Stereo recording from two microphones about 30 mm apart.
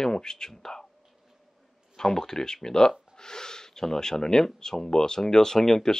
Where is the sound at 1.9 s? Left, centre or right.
Left.